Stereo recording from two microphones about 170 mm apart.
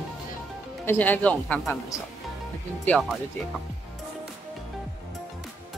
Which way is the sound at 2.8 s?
5° left (ahead or behind).